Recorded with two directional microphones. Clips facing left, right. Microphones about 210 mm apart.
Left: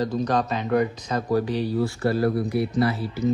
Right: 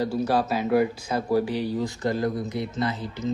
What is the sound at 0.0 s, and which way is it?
Speech, 10° right (ahead or behind).